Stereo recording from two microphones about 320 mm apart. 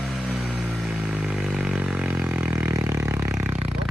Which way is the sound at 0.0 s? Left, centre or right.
Centre.